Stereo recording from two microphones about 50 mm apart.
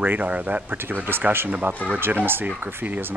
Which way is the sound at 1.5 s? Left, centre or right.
Right.